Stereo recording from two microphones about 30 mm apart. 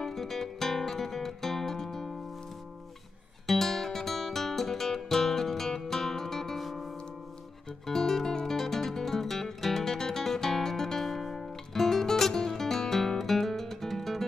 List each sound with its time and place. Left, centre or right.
0.0 s music: centre
3.4 s music: centre
6.6 s music: centre
7.8 s music: centre